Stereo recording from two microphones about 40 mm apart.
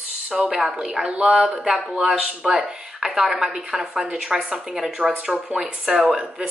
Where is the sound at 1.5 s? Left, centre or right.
Centre.